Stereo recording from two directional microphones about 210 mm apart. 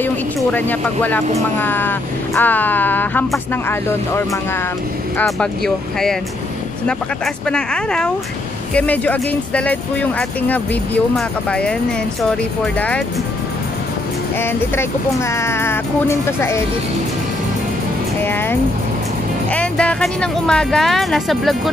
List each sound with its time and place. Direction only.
0.0 s speech: 10° left (ahead or behind)
7.4 s speech: 5° left (ahead or behind)
14.4 s speech: 10° left (ahead or behind)
18.2 s speech: 10° left (ahead or behind)